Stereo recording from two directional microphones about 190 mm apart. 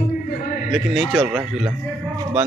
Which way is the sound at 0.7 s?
5° right (ahead or behind).